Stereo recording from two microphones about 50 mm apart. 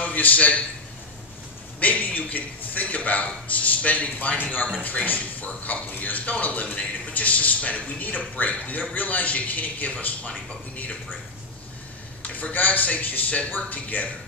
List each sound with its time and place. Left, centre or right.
0.0 s a man's voice: left
1.8 s speech: left
12.2 s a man's voice: left